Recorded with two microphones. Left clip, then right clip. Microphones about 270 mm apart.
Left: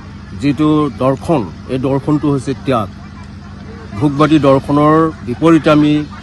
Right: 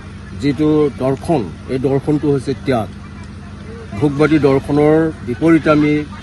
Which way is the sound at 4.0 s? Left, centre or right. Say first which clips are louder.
Left 2 dB; left.